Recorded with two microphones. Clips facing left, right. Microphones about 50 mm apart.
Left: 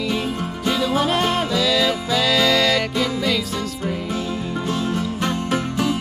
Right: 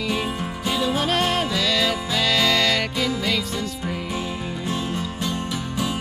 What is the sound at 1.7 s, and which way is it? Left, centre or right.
Music, centre.